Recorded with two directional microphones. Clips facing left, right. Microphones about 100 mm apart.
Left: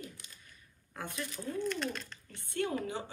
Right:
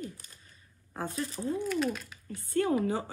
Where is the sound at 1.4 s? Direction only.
20° right (ahead or behind).